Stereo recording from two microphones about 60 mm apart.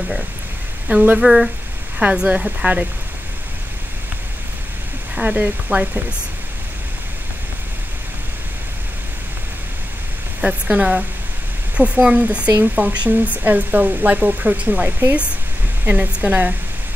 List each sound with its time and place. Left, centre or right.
0.8 s speech: right
1.2 s speech: centre
2.0 s speech: right
5.1 s speech: right
10.4 s speech: right